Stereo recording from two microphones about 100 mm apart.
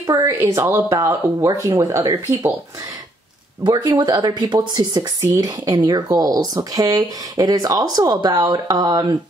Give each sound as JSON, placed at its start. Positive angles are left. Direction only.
{"t": 0.0, "sound": "a woman's voice", "side_deg": -35}
{"t": 0.4, "sound": "speech", "side_deg": -25}
{"t": 3.6, "sound": "speech", "side_deg": -50}